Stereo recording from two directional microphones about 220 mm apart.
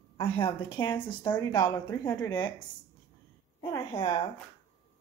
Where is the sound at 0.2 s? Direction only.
20° left (ahead or behind).